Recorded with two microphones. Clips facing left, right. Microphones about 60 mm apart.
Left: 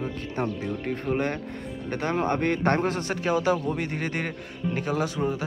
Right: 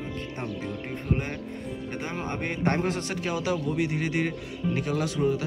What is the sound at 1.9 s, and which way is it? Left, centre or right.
Speech, left.